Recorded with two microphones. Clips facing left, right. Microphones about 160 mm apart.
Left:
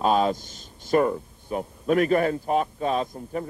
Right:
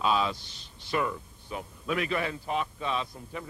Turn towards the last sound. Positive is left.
turn(degrees=45)  # may be behind; listen again after turning